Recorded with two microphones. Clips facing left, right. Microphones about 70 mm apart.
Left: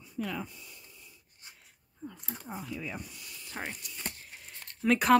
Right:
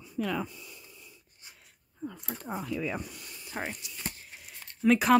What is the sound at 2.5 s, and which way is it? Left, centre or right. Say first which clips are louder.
Speech: right 6 dB; right.